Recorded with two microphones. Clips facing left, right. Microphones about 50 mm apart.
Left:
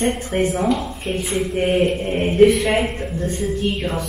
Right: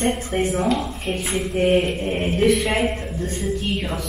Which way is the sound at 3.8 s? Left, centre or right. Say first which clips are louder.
Left 3 dB; left.